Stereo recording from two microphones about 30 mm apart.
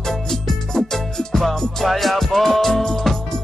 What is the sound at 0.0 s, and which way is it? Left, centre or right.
Music, centre.